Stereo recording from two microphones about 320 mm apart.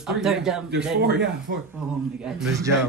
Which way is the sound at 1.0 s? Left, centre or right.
Right.